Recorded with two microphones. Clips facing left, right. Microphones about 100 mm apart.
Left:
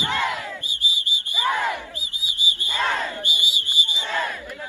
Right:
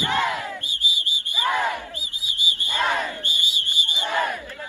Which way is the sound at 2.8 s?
15° right (ahead or behind).